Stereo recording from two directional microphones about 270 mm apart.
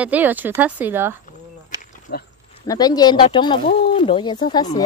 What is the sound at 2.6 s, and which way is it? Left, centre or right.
Speech, centre.